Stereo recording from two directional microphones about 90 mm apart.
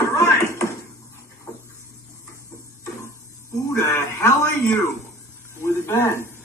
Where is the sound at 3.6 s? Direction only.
30° left (ahead or behind).